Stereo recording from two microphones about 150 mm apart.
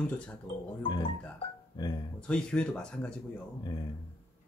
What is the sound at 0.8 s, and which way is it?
Speech, 35° left (ahead or behind).